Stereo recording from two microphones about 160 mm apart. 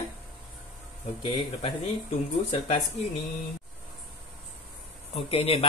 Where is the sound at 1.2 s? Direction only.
30° left (ahead or behind).